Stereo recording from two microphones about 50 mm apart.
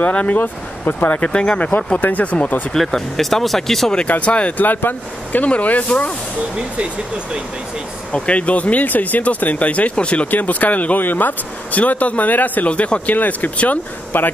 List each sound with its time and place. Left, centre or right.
0.0 s speech: left
0.4 s speech: left
1.2 s speech: left
2.0 s speech: left
2.2 s speech: left
2.7 s speech: centre
4.1 s speech: left
8.1 s speech: left